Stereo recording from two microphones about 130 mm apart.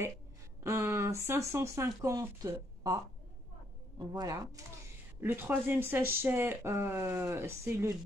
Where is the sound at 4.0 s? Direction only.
25° right (ahead or behind).